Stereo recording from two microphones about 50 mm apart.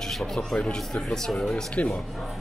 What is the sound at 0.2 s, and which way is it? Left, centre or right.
Speech, centre.